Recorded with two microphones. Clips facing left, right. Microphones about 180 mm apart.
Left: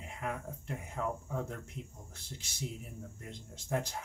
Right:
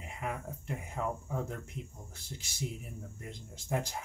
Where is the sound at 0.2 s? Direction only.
10° right (ahead or behind).